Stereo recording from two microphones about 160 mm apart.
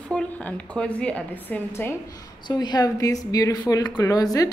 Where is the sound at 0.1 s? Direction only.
5° left (ahead or behind).